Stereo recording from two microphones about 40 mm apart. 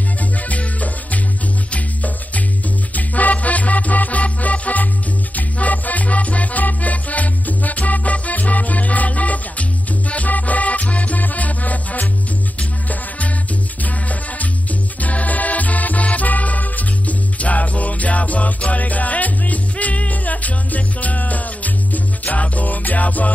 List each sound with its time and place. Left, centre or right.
0.5 s music: left
13.8 s music: left